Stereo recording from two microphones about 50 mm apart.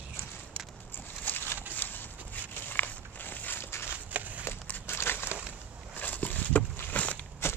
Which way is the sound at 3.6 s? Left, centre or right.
Left.